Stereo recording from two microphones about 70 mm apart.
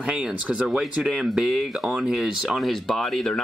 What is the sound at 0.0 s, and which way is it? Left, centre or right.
Speech, centre.